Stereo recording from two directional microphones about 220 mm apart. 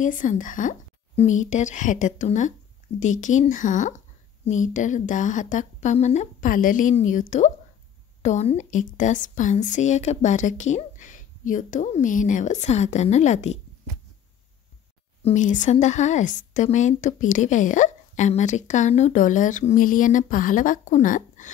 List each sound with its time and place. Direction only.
0.0 s a woman's voice: 35° left (ahead or behind)
15.2 s a woman's voice: 35° left (ahead or behind)